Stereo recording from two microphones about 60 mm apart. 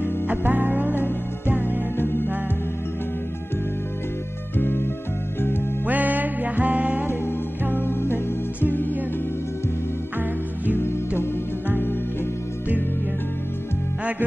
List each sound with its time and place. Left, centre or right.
0.3 s music: right
2.0 s music: left
4.6 s music: left
5.9 s music: right
7.7 s music: left